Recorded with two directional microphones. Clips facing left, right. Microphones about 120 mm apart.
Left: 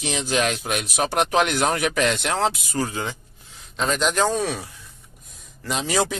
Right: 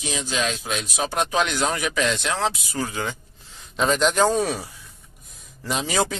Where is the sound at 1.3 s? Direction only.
55° left (ahead or behind).